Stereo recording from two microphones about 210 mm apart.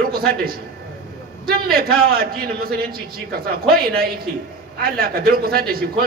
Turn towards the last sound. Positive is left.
turn(degrees=-45)  # may be behind; listen again after turning